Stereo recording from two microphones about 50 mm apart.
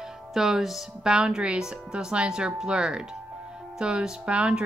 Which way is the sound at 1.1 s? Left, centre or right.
Centre.